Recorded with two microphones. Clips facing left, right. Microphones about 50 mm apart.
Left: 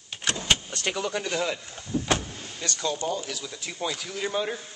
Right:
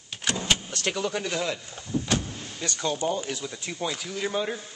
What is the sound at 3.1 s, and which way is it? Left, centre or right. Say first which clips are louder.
Speech: right 1 dB; right.